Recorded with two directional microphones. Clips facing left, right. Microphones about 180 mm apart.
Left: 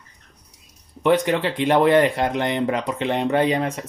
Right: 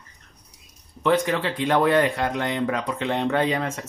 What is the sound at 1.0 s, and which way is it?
Speech, 20° left (ahead or behind).